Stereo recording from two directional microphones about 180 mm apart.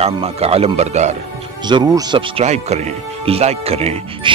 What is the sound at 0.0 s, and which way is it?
Speech, 35° right (ahead or behind).